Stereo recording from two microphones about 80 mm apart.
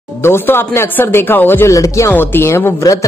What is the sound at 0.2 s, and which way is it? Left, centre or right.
A woman's voice, left.